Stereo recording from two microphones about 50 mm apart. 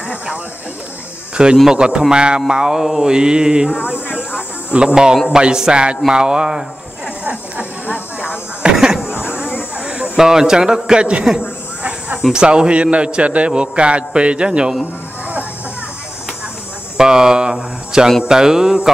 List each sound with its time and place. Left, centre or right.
1.3 s speech: centre
1.7 s mantra: centre
4.2 s a sound: left
4.7 s mantra: centre
8.7 s a sound: centre
9.1 s a sound: right
10.1 s mantra: centre
12.2 s a man's voice: centre
16.9 s mantra: centre